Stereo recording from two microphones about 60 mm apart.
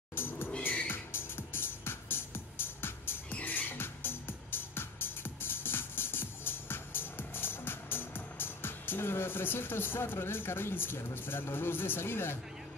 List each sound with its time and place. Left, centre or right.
0.1 s music: left
11.1 s speech: left